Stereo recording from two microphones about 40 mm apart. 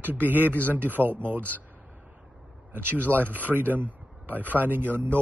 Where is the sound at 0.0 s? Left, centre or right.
Right.